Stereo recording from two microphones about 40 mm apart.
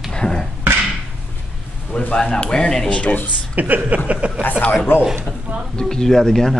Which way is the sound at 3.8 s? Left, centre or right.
Right.